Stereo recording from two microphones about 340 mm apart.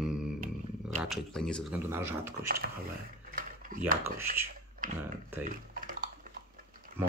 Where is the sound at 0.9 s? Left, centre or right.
Centre.